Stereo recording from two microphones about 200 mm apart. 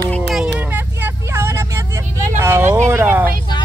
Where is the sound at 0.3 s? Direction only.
5° right (ahead or behind).